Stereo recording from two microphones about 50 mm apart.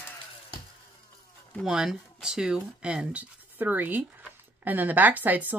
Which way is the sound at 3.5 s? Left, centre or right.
Right.